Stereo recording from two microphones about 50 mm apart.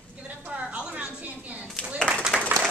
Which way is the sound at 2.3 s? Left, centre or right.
Centre.